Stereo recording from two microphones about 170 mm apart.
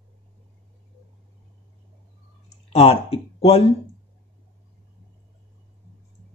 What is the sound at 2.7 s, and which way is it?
Speech, 35° left (ahead or behind).